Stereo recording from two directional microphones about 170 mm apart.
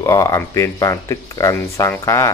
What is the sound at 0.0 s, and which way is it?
Speech, 20° left (ahead or behind).